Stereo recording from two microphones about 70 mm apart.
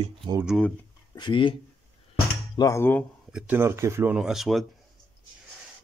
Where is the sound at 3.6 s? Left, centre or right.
Right.